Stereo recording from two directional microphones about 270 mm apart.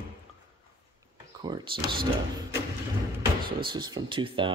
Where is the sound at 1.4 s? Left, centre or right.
Centre.